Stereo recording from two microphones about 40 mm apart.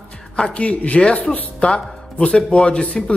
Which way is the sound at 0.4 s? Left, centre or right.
Left.